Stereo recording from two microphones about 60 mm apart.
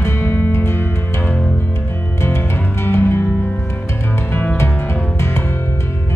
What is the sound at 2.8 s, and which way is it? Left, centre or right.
Music, left.